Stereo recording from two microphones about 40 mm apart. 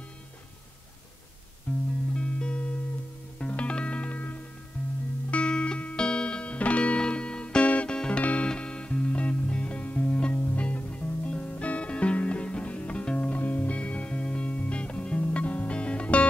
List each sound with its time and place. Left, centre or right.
1.7 s music: left
2.1 s music: left
5.3 s music: left
15.1 s music: left